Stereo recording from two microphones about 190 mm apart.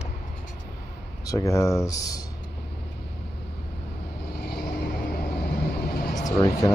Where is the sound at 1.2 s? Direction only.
15° left (ahead or behind).